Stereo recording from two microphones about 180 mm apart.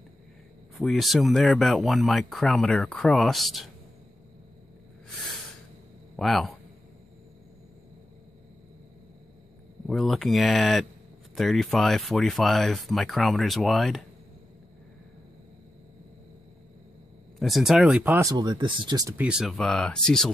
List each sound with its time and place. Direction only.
0.7 s speech: centre (ahead or behind)
6.1 s speech: centre (ahead or behind)
9.8 s speech: centre (ahead or behind)
17.4 s speech: centre (ahead or behind)
18.3 s speech: 25° right (ahead or behind)
19.2 s speech: centre (ahead or behind)